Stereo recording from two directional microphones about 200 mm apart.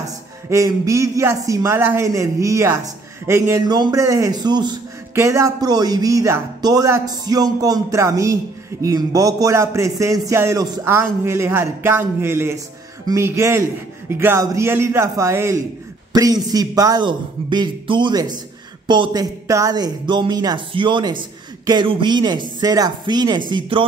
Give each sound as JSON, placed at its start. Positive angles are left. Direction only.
{"t": 0.0, "sound": "a man's voice", "side_deg": -15}